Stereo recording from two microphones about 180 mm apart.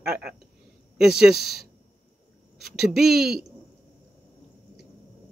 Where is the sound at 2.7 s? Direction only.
Centre (ahead or behind).